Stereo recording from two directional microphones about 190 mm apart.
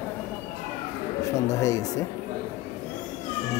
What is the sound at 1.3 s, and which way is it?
Speech, 15° left (ahead or behind).